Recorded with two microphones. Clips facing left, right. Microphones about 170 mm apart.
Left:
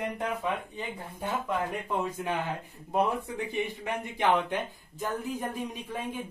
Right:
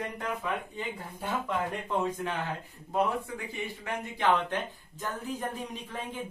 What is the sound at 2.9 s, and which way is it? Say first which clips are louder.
Speech: left 1 dB; 20° left (ahead or behind).